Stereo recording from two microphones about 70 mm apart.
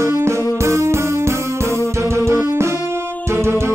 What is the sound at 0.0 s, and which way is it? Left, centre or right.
Music, right.